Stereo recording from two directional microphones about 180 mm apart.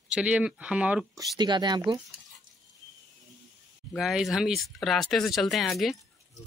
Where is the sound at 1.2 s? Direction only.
25° right (ahead or behind).